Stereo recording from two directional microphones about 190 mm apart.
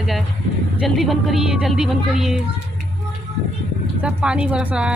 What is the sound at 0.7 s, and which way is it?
Speech, centre (ahead or behind).